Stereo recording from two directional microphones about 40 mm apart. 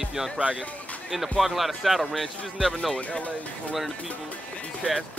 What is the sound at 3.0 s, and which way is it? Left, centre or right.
Speech, left.